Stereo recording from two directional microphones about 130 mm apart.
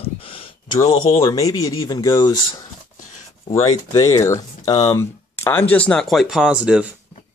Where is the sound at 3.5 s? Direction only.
25° left (ahead or behind); by 6.8 s 5° right (ahead or behind).